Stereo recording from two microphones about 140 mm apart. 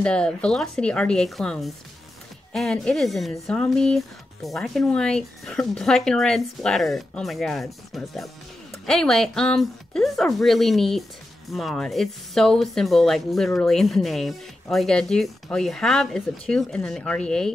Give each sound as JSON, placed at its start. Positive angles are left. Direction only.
{"t": 0.0, "sound": "speech", "side_deg": 5}